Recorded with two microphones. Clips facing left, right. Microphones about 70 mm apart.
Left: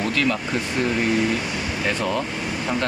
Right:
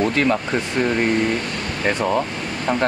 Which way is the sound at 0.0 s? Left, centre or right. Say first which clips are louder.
Right 4 dB; right.